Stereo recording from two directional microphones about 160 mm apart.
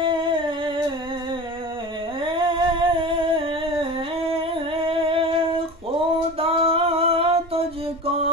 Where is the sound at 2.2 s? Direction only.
30° right (ahead or behind).